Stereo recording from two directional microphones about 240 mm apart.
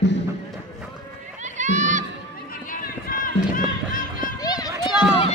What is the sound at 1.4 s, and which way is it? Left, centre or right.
Run, right.